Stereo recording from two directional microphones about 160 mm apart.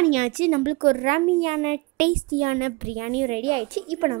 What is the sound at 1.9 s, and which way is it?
A woman's voice, 55° right (ahead or behind).